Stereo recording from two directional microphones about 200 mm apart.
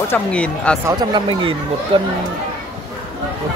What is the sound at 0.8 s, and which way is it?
Speech, 20° right (ahead or behind).